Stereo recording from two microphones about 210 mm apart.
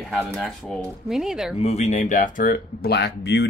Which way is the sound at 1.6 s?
30° left (ahead or behind).